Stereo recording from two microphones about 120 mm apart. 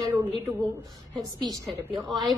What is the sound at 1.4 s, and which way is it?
Speech, 30° right (ahead or behind).